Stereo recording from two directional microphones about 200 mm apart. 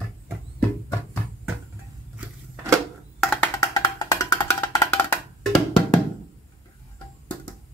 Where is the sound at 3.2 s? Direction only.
5° left (ahead or behind).